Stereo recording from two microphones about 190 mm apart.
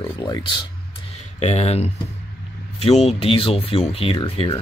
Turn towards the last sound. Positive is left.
turn(degrees=25)  # may be behind; listen again after turning